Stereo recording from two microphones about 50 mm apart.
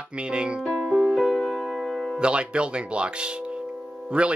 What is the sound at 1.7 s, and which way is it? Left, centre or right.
Music, centre.